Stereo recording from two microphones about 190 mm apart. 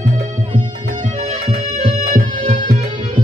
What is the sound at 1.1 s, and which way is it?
Music, 40° right (ahead or behind).